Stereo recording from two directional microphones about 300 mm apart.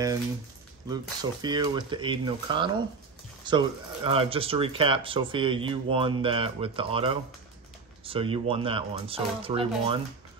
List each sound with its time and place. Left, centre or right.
0.8 s speech: centre